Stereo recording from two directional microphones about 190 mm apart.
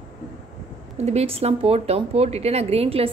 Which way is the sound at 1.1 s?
30° right (ahead or behind).